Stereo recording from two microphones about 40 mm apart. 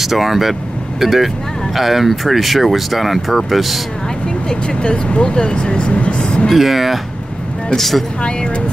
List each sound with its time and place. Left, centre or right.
0.0 s speech: centre
4.5 s speech: left
6.5 s speech: centre